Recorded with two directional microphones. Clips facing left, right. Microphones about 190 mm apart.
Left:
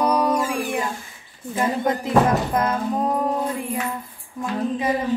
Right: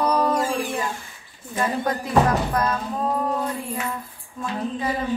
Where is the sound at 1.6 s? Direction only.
20° left (ahead or behind).